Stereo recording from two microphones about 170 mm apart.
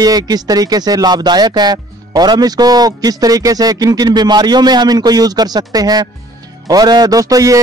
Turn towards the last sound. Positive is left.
turn(degrees=-20)  # may be behind; listen again after turning